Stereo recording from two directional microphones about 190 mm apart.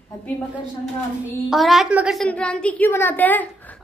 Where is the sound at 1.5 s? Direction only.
Centre (ahead or behind).